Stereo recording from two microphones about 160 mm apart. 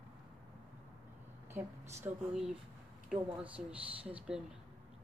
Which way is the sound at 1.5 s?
15° right (ahead or behind).